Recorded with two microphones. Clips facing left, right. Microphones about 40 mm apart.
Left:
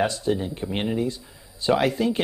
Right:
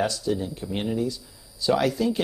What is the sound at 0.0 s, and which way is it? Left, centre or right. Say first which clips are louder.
Speech: left 2 dB; left.